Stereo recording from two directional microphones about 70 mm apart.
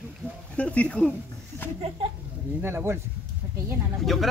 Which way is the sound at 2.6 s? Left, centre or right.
Right.